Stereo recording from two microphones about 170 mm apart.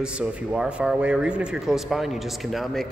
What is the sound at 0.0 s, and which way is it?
Speech, 5° right (ahead or behind).